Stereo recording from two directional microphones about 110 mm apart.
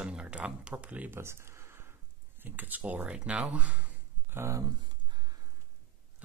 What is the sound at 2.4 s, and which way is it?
Speech, 15° right (ahead or behind).